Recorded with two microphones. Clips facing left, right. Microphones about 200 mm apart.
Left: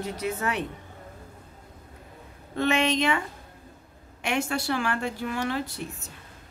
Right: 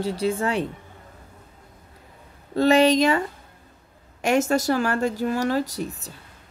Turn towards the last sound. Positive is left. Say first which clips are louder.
# right 6 dB
turn(degrees=-40)  # may be behind; listen again after turning